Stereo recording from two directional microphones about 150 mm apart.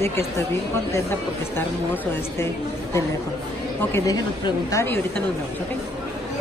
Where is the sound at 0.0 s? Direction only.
20° left (ahead or behind).